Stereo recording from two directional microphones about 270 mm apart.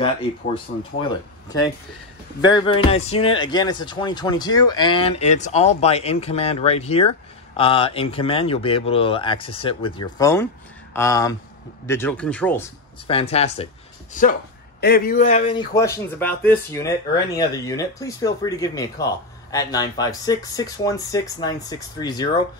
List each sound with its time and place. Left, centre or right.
0.7 s speech: left
2.4 s speech: centre
13.0 s speech: left